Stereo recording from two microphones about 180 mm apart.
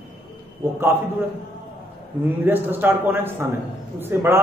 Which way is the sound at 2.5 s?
10° right (ahead or behind).